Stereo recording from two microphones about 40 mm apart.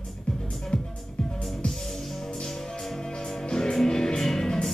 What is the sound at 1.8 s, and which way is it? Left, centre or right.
Music, centre.